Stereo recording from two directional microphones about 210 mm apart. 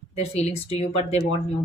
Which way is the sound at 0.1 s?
30° left (ahead or behind).